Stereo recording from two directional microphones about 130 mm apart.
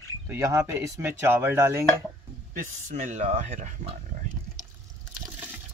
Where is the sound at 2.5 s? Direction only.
70° right (ahead or behind).